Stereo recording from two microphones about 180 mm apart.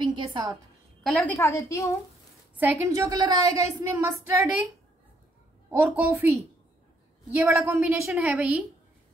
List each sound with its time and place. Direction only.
0.0 s a woman's voice: 25° right (ahead or behind)
1.0 s a woman's voice: 5° left (ahead or behind)
1.4 s a woman's voice: 15° left (ahead or behind)
2.6 s a woman's voice: 15° right (ahead or behind)
5.7 s a woman's voice: 10° right (ahead or behind)
7.3 s a woman's voice: 10° right (ahead or behind)